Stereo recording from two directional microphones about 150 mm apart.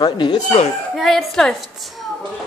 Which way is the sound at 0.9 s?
Centre (ahead or behind).